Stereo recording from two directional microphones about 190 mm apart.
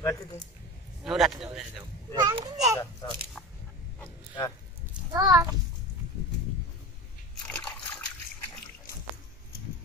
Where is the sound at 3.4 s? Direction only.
5° left (ahead or behind).